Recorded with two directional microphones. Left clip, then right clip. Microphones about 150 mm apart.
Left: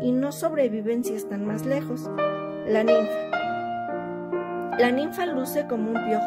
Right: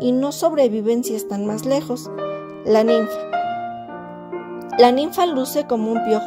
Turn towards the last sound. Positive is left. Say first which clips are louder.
# right 6 dB
turn(degrees=-25)  # may be behind; listen again after turning